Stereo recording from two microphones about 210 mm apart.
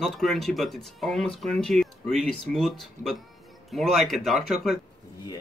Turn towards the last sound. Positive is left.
turn(degrees=0)  # may be behind; listen again after turning